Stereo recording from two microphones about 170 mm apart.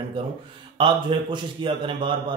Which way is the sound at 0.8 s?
30° right (ahead or behind).